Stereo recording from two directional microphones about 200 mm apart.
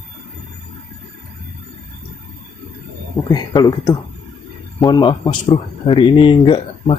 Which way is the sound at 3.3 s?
20° left (ahead or behind).